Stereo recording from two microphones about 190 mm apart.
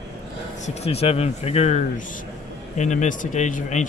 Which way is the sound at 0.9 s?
30° left (ahead or behind).